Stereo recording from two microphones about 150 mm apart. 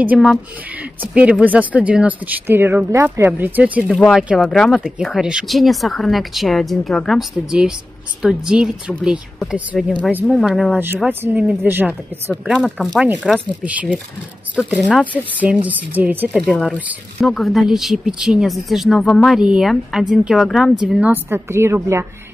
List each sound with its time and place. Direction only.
0.0 s speech: 10° right (ahead or behind)
11.1 s speech: 10° right (ahead or behind)
12.5 s speech: 5° left (ahead or behind)
14.6 s speech: centre (ahead or behind); by 22.0 s 15° right (ahead or behind)